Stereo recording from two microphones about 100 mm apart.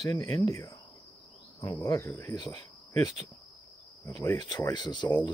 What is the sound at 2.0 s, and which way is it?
Speech, 25° left (ahead or behind).